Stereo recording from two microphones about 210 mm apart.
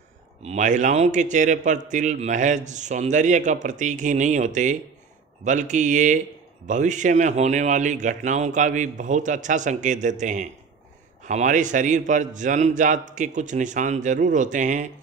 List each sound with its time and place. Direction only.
0.4 s a man's voice: 35° right (ahead or behind)